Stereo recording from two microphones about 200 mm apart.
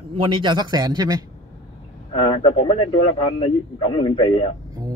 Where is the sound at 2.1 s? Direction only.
25° left (ahead or behind).